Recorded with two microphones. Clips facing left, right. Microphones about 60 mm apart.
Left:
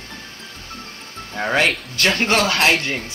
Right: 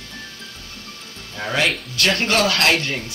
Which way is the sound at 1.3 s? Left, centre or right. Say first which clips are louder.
Left 3 dB; left.